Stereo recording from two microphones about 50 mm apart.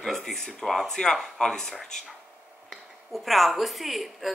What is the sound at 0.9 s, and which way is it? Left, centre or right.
Speech, centre.